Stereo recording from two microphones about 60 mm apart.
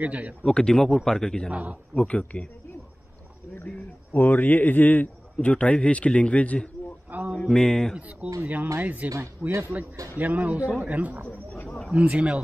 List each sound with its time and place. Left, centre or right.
0.0 s speech: right
0.5 s speech: centre
1.5 s speech: right
2.0 s speech: centre
4.1 s a man's voice: left
7.1 s speech: right
7.3 s speech: centre
8.2 s speech: right
9.4 s speech: centre
10.1 s speech: right